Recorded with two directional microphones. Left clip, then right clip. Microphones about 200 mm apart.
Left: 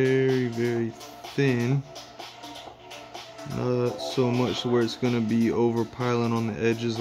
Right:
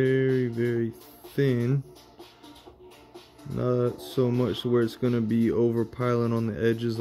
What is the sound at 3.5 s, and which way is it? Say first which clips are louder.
Speech: even; 20° right (ahead or behind).